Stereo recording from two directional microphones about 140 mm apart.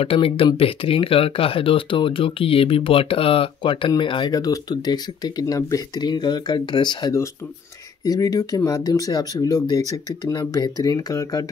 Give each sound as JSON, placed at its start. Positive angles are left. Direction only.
{"t": 0.0, "sound": "speech", "side_deg": 40}